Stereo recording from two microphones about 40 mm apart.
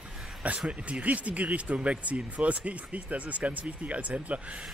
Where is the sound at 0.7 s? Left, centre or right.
Right.